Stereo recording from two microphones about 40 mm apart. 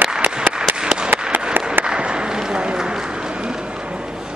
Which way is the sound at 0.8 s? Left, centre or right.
Centre.